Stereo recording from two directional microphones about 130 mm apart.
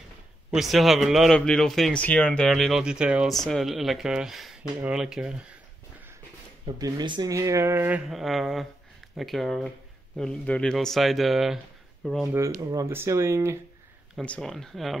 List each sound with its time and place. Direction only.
0.5 s a man's voice: centre (ahead or behind)
6.8 s speech: 35° right (ahead or behind); by 8.0 s 15° right (ahead or behind)
8.1 s a man's voice: centre (ahead or behind)
12.7 s speech: 20° right (ahead or behind)
14.1 s a man's voice: 5° left (ahead or behind)